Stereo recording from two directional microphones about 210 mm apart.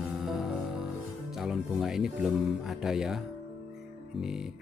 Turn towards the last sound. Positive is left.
turn(degrees=0)  # may be behind; listen again after turning